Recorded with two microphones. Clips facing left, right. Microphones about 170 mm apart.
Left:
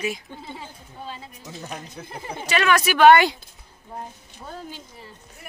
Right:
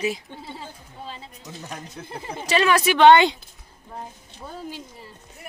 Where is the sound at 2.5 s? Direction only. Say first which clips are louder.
Right 1 dB; 30° right (ahead or behind).